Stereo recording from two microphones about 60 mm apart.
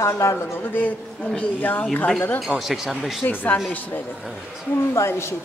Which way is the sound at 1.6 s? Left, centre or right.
Left.